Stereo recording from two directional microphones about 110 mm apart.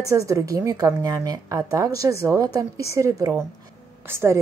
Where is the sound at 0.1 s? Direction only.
30° right (ahead or behind).